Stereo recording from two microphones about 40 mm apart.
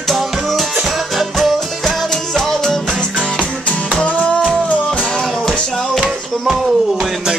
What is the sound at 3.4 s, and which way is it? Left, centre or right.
Music, left.